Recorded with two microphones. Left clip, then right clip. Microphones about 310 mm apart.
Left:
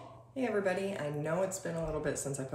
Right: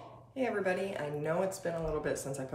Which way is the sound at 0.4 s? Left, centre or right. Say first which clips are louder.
Even; centre.